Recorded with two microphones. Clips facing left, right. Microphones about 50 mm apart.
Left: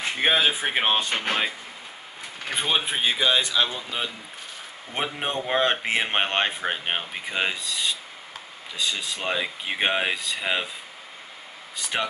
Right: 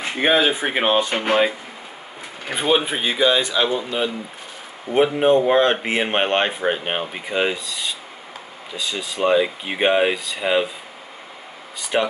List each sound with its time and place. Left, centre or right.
0.0 s speech: centre
11.9 s speech: centre